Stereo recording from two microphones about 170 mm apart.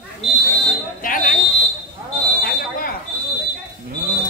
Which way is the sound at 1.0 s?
50° left (ahead or behind).